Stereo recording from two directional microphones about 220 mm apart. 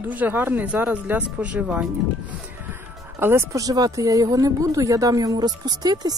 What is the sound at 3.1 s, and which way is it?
Speech, 10° right (ahead or behind).